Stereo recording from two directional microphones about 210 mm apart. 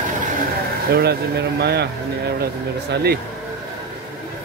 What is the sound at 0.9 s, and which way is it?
Speech, 50° right (ahead or behind).